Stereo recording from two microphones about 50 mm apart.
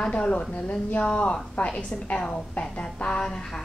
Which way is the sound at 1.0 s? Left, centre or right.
Centre.